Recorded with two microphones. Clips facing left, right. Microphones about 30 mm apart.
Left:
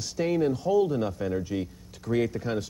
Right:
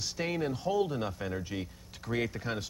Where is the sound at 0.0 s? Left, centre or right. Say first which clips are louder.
Left 7 dB; centre.